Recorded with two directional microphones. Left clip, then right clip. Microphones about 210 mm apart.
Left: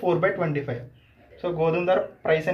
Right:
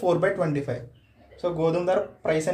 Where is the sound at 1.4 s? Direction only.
45° right (ahead or behind).